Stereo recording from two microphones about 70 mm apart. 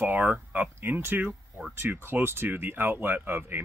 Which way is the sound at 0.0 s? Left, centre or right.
Right.